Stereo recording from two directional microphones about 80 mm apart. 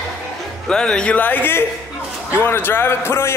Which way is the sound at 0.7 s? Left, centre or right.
Centre.